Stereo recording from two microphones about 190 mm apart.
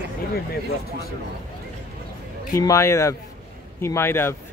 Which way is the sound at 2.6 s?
15° left (ahead or behind).